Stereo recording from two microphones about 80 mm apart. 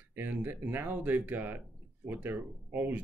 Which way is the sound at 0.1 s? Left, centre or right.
Right.